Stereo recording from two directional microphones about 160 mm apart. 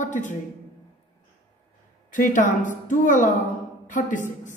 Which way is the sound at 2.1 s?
55° left (ahead or behind).